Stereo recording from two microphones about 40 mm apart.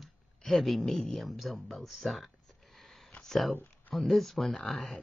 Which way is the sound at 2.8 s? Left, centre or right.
Centre.